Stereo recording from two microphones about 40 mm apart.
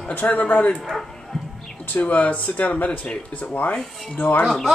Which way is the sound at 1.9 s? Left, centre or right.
Left.